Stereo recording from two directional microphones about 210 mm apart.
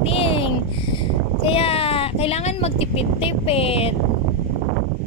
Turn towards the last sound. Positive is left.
turn(degrees=30)  # may be behind; listen again after turning